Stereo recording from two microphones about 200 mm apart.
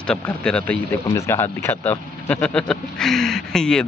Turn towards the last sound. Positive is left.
turn(degrees=5)  # may be behind; listen again after turning